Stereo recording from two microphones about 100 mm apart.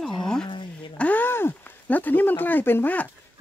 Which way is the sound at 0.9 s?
15° left (ahead or behind).